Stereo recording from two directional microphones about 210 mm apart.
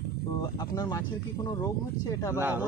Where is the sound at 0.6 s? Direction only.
15° left (ahead or behind).